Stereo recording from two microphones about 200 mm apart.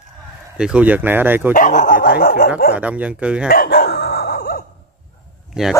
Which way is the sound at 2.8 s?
5° right (ahead or behind).